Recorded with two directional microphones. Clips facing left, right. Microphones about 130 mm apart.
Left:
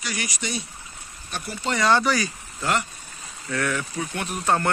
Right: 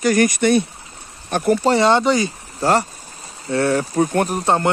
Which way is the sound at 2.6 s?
35° right (ahead or behind).